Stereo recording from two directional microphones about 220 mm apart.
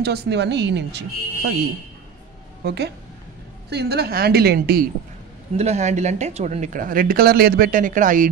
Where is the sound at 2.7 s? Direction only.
50° right (ahead or behind).